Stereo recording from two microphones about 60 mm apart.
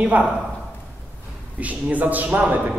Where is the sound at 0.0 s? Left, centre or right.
Right.